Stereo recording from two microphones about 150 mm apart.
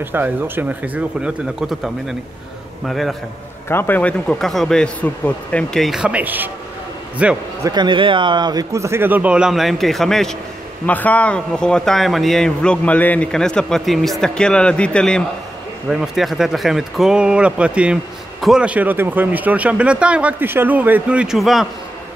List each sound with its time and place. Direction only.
0.0 s a man's voice: 15° right (ahead or behind)
3.6 s a man's voice: 15° left (ahead or behind); by 7.3 s 10° right (ahead or behind)
7.6 s a man's voice: 30° right (ahead or behind); by 21.6 s centre (ahead or behind)